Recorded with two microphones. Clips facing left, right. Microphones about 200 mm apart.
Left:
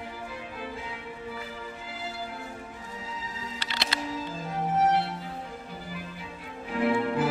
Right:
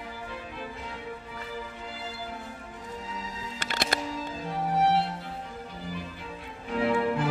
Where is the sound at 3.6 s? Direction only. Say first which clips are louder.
Right 5 dB; 50° right (ahead or behind).